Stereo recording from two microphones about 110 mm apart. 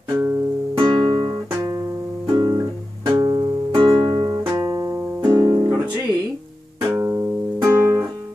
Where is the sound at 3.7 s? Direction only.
50° right (ahead or behind).